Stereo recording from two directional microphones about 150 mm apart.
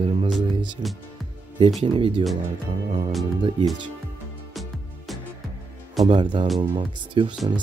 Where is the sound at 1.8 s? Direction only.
35° right (ahead or behind).